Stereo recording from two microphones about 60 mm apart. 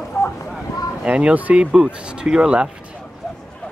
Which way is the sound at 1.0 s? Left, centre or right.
Centre.